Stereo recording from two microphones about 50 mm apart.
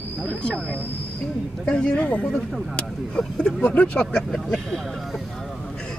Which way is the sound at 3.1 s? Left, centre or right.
Centre.